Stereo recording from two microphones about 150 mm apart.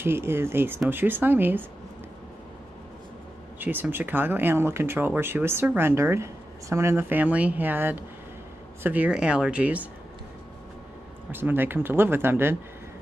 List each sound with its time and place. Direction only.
0.0 s speech: 15° right (ahead or behind)
3.5 s speech: 10° right (ahead or behind)
11.3 s speech: 15° right (ahead or behind)